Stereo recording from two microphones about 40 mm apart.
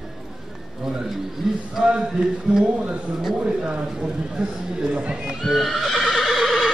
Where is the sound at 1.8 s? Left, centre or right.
Right.